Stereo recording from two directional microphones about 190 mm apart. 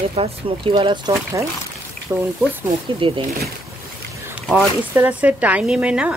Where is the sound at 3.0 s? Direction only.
25° right (ahead or behind).